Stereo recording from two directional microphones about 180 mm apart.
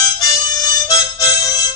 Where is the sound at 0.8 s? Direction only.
20° left (ahead or behind).